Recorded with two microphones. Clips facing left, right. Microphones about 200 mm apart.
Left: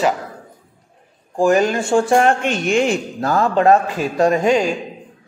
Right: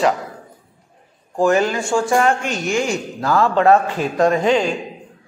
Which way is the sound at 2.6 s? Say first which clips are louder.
Left 3 dB; 60° left (ahead or behind).